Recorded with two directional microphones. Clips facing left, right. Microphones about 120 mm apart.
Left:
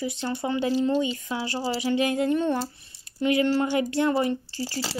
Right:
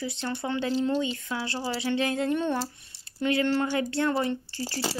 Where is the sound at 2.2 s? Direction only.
5° left (ahead or behind).